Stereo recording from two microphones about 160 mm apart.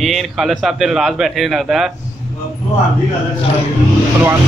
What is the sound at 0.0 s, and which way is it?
Speech, centre (ahead or behind).